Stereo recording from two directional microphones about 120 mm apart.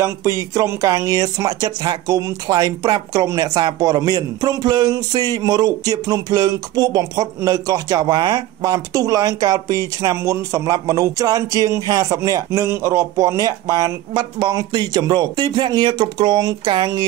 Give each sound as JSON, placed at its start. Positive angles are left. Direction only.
{"t": 0.0, "sound": "speech", "side_deg": -25}